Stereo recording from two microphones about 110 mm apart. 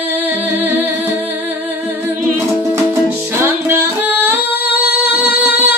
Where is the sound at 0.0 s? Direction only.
15° right (ahead or behind).